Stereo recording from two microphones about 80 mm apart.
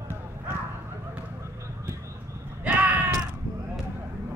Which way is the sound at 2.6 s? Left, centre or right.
Centre.